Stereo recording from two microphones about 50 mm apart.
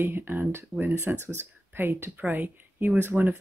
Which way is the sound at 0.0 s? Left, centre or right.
Right.